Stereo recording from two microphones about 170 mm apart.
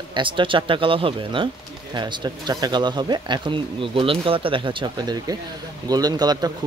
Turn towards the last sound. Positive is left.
turn(degrees=-25)  # may be behind; listen again after turning